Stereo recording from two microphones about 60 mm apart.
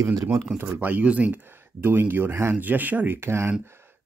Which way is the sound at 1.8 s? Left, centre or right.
Right.